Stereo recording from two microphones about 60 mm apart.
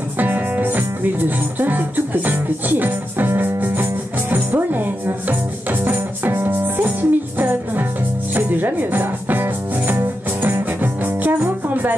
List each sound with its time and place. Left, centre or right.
0.2 s music: right